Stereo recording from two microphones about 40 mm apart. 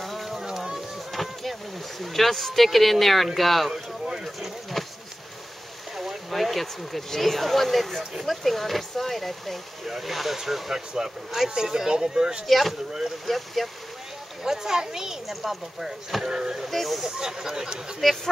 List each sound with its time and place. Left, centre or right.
0.0 s a sound: centre
0.4 s a sound: centre
1.1 s speech: centre
3.7 s a sound: centre
5.9 s speech: centre
8.0 s speech: centre
8.3 s speech: centre
12.4 s speech: centre
14.4 s speech: centre
15.2 s speech: centre
16.7 s speech: centre
17.0 s speech: centre
18.0 s speech: centre